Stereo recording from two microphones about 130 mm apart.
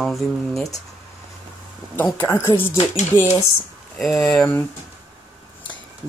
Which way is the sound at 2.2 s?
15° left (ahead or behind).